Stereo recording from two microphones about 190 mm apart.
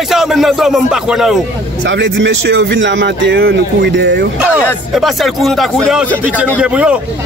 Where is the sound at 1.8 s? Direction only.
70° right (ahead or behind).